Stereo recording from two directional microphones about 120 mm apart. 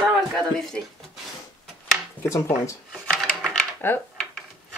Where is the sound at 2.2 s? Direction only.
25° left (ahead or behind).